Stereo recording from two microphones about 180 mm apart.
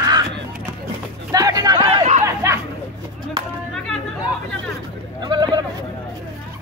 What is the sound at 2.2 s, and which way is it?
Chatter, 15° right (ahead or behind).